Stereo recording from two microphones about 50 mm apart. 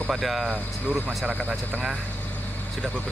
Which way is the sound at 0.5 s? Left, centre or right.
Centre.